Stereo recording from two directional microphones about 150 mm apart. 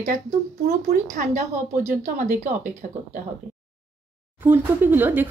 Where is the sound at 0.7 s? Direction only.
60° right (ahead or behind).